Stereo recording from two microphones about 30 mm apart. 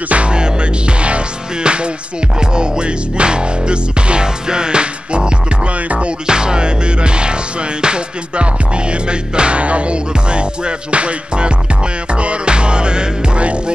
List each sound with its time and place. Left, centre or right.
0.3 s music: right
9.6 s music: right